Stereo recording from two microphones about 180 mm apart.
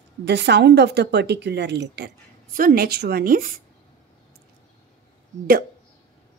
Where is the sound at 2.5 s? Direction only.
55° right (ahead or behind).